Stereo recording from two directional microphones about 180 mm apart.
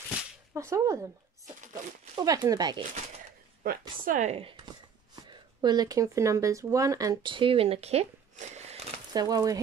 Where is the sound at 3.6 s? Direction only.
50° right (ahead or behind).